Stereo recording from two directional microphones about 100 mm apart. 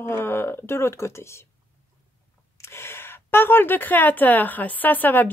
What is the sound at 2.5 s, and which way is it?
A woman's voice, 25° left (ahead or behind).